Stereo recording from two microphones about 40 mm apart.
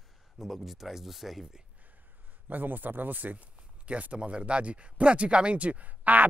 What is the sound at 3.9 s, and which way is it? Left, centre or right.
Speech, right.